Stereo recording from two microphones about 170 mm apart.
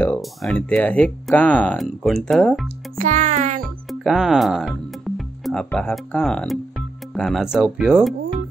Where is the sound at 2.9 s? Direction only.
45° right (ahead or behind).